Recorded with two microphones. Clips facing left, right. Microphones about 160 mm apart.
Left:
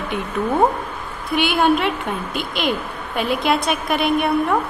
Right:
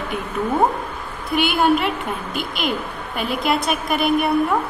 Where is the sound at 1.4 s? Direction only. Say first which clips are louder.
Even; centre (ahead or behind).